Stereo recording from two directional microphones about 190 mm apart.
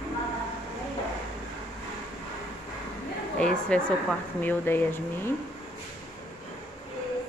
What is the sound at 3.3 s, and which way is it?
A woman's voice, 5° left (ahead or behind).